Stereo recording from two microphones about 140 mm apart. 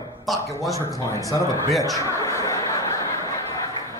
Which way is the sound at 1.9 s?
20° left (ahead or behind).